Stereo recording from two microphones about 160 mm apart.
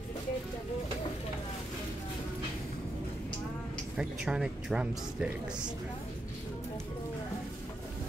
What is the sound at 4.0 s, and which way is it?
Speech, 5° right (ahead or behind).